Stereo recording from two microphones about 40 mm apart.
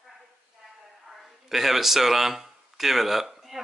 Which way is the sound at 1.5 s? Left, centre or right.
Centre.